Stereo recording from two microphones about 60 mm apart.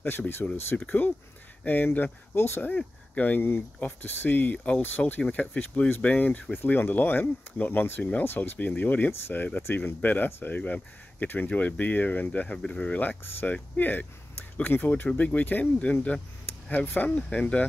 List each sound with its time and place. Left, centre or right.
0.4 s speech: left
2.3 s speech: left
2.6 s speech: left
13.2 s speech: left
16.8 s speech: left
17.1 s speech: centre